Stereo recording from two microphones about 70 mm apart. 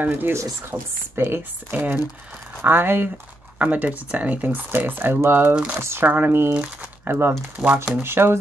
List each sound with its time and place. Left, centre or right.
0.1 s speech: right
6.0 s speech: right
7.1 s speech: right
7.6 s speech: centre
8.0 s speech: right